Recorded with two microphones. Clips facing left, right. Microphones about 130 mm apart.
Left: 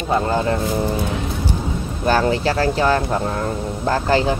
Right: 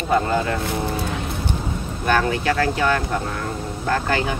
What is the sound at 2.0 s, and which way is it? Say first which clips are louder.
Speech: left 2 dB; 30° left (ahead or behind).